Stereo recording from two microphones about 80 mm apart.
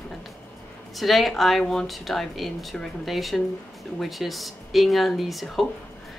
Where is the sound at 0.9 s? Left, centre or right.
Centre.